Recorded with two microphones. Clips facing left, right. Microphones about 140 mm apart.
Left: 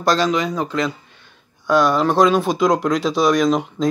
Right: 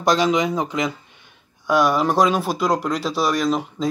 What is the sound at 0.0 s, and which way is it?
Speech, 20° right (ahead or behind).